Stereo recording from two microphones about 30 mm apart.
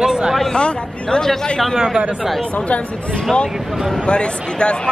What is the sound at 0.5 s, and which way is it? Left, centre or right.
Speech, left.